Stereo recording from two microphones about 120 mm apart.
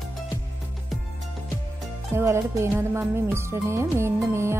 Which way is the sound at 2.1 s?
25° right (ahead or behind).